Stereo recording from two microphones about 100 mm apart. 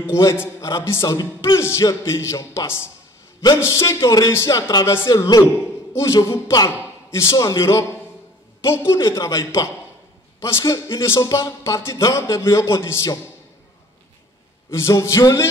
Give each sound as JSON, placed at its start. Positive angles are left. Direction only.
{"t": 0.1, "sound": "music", "side_deg": 25}
{"t": 3.5, "sound": "speech", "side_deg": 30}
{"t": 6.2, "sound": "music", "side_deg": 25}
{"t": 6.8, "sound": "speech", "side_deg": 25}
{"t": 8.6, "sound": "music", "side_deg": 25}
{"t": 14.7, "sound": "speech", "side_deg": 30}